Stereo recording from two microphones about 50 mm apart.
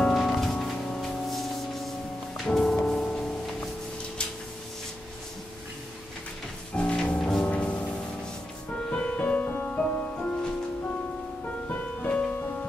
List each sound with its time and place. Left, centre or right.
0.1 s music: centre
6.7 s music: left
7.4 s music: left
9.7 s music: centre
12.1 s music: left